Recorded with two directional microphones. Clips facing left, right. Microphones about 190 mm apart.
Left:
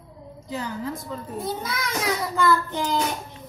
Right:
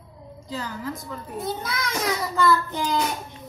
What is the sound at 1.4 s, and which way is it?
A child's voice, centre (ahead or behind).